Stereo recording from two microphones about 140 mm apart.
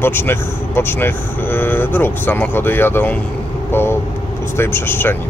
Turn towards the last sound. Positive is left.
turn(degrees=15)  # may be behind; listen again after turning